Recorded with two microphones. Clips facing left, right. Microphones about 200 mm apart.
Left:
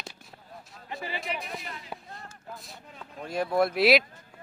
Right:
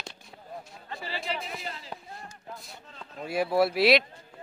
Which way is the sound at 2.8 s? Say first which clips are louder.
Left 1 dB; 10° left (ahead or behind).